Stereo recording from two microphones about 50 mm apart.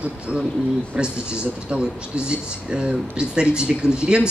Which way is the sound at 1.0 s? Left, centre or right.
Centre.